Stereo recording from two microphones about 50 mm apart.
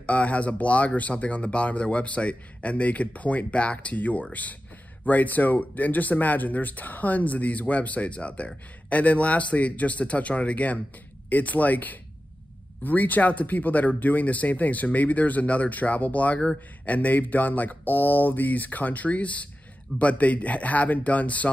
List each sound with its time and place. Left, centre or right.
0.0 s speech: left